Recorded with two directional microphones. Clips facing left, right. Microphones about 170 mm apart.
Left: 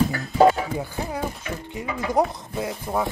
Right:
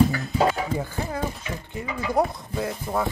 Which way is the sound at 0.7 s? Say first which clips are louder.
Even; 10° left (ahead or behind).